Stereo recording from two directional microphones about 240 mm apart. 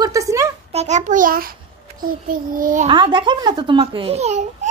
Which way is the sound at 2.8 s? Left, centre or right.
Right.